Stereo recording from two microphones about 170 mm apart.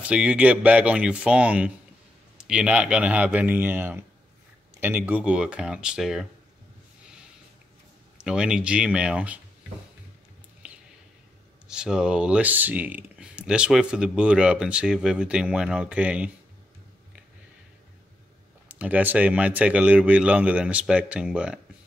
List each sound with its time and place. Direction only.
0.0 s speech: 5° right (ahead or behind)
8.2 s speech: 5° right (ahead or behind)
10.6 s a sound: 5° right (ahead or behind)
11.6 s speech: 5° right (ahead or behind)
18.7 s speech: 10° right (ahead or behind)